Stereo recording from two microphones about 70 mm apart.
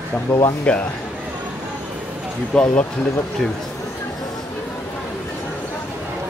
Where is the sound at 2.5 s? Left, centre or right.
Centre.